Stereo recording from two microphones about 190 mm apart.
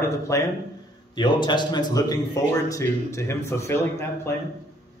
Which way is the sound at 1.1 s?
25° left (ahead or behind).